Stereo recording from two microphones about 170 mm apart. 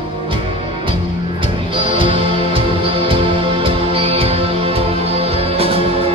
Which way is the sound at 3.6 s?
35° right (ahead or behind).